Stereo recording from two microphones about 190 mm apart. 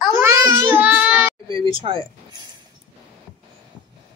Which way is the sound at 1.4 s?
25° right (ahead or behind).